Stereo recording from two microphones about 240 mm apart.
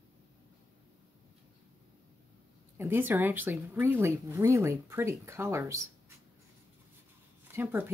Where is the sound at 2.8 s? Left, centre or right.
Centre.